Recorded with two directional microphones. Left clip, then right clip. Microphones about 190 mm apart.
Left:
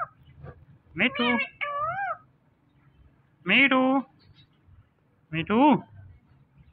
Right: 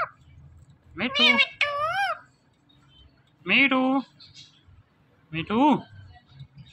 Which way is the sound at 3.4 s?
10° right (ahead or behind).